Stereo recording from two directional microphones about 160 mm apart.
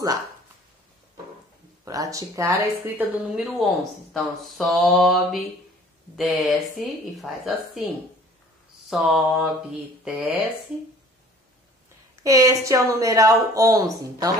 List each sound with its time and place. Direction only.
1.9 s speech: 20° right (ahead or behind)
3.6 s speech: centre (ahead or behind)
8.9 s speech: centre (ahead or behind)
12.2 s speech: 20° right (ahead or behind)